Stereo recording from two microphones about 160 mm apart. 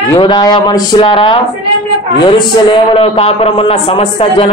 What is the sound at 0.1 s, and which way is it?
A man's voice, 30° left (ahead or behind).